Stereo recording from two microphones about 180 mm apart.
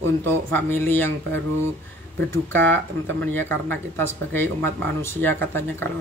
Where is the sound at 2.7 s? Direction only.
10° left (ahead or behind).